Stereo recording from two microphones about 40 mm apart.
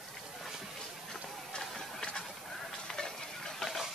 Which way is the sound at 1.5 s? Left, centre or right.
Centre.